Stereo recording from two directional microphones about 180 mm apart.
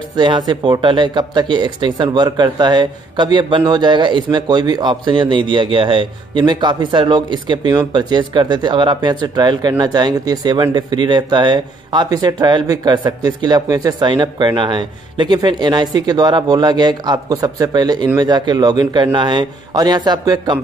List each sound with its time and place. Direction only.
0.1 s speech: 25° right (ahead or behind)